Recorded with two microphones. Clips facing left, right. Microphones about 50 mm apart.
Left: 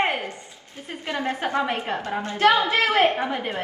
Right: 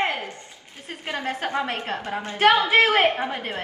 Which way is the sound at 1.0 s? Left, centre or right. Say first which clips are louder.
Left 2 dB; centre.